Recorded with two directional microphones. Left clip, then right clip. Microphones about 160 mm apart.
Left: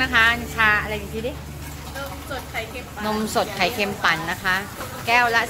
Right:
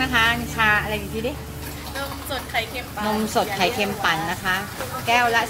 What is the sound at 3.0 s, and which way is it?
A woman's voice, 5° right (ahead or behind).